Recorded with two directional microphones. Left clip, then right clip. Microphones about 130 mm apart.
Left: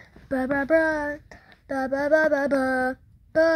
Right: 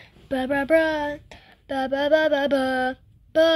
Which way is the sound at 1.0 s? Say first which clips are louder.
Right 1 dB; 25° right (ahead or behind).